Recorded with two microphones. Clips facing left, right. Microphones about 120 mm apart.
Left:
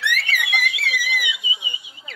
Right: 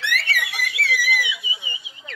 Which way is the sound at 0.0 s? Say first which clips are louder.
Left 1 dB; 20° left (ahead or behind).